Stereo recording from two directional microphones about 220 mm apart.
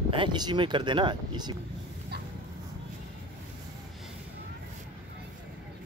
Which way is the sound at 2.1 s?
45° right (ahead or behind).